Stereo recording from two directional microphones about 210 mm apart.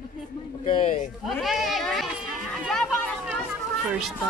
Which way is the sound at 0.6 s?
25° left (ahead or behind).